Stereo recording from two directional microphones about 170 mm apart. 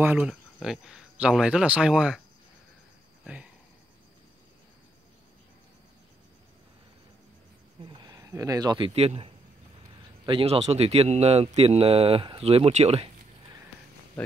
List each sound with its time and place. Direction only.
0.0 s speech: 10° right (ahead or behind)
7.8 s speech: 25° right (ahead or behind)